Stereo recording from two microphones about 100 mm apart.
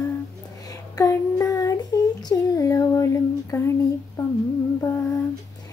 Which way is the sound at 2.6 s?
35° left (ahead or behind).